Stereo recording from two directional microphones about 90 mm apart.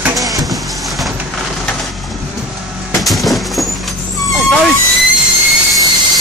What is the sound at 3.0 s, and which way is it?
Vehicle, centre (ahead or behind).